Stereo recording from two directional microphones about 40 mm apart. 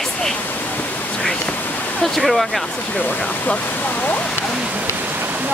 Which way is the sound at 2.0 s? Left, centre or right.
Centre.